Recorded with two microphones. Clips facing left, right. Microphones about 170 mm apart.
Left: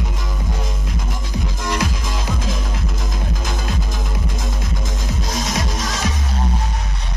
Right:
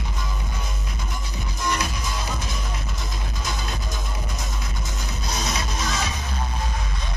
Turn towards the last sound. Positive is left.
turn(degrees=90)